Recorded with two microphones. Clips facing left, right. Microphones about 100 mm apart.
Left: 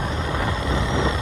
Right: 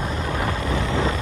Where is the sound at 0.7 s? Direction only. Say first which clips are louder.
Even; 20° left (ahead or behind).